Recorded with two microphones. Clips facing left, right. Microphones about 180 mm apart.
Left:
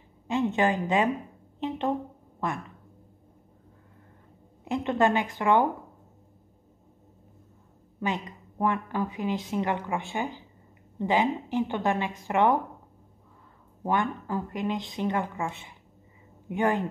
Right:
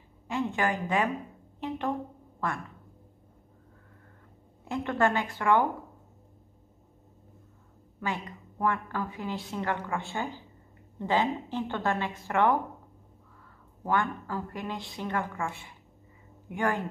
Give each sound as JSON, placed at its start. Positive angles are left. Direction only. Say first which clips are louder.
{"t": 0.3, "sound": "a woman's voice", "louder": "left 4 dB", "side_deg": 20}
{"t": 4.6, "sound": "a woman's voice", "louder": "left 3 dB", "side_deg": 20}
{"t": 8.0, "sound": "a woman's voice", "louder": "left 3 dB", "side_deg": 20}
{"t": 13.8, "sound": "a woman's voice", "louder": "left 2 dB", "side_deg": 20}